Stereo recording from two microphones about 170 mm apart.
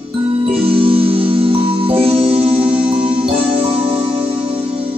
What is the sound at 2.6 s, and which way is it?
Music, 5° right (ahead or behind).